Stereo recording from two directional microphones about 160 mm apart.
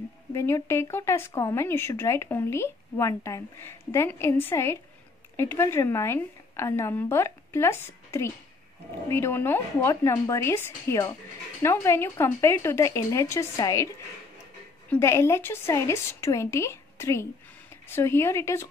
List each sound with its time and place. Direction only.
0.3 s speech: 20° left (ahead or behind)
14.9 s speech: 15° left (ahead or behind)